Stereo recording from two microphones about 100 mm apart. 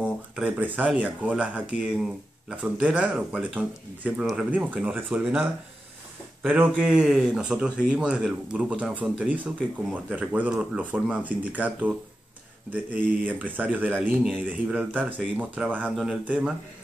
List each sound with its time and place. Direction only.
0.0 s speech: 15° right (ahead or behind)